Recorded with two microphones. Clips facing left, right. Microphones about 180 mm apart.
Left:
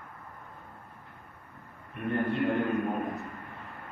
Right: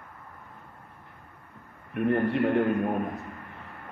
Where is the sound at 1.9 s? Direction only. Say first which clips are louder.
Right 6 dB; 65° right (ahead or behind).